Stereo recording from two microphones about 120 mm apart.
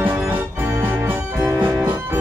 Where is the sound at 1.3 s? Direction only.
20° right (ahead or behind).